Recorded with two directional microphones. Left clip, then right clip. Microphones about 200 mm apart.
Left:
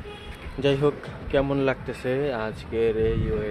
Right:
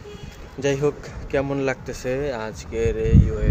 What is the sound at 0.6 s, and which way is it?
A man's voice, 5° left (ahead or behind).